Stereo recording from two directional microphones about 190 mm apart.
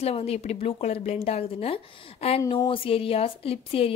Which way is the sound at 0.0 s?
30° left (ahead or behind).